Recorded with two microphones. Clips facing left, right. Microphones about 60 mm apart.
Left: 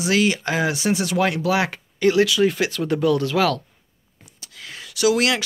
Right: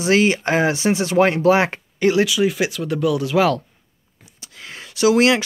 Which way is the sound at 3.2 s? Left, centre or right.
Centre.